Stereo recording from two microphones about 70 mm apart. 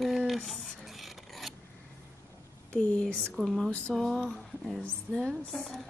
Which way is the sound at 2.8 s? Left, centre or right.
Centre.